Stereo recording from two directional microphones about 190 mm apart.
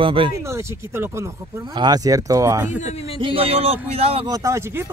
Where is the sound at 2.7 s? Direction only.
40° left (ahead or behind).